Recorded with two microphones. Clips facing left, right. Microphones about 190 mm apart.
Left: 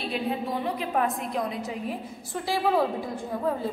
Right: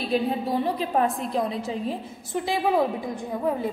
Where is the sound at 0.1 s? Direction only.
35° right (ahead or behind).